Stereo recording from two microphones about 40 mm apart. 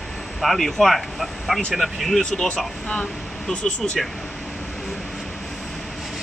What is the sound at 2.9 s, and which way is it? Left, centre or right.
Speech, left.